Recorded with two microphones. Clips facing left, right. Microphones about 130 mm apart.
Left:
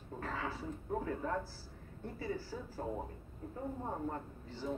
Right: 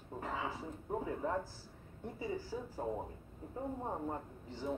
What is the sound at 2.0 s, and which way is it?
Speech, 15° right (ahead or behind).